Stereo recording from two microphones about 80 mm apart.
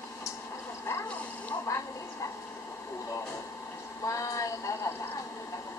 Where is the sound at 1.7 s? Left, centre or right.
Left.